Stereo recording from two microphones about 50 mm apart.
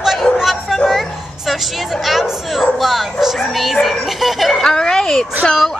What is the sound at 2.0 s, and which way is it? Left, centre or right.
Bow-wow, centre.